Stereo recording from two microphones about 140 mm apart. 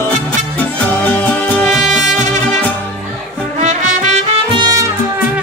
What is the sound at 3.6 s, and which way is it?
Music, 55° right (ahead or behind).